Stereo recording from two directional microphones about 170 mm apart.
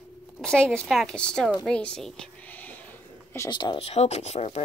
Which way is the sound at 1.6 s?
5° left (ahead or behind).